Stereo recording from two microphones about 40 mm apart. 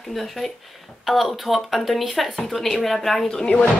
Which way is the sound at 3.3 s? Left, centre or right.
Centre.